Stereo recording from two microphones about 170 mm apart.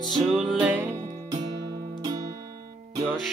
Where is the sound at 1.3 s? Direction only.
20° right (ahead or behind).